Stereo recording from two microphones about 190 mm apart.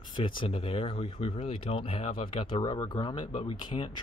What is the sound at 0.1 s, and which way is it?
Speech, 25° left (ahead or behind).